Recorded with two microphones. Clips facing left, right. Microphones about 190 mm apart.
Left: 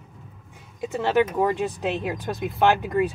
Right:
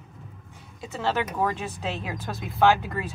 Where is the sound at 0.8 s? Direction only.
15° left (ahead or behind).